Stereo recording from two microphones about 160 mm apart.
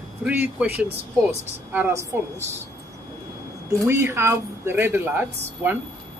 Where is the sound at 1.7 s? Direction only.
15° right (ahead or behind).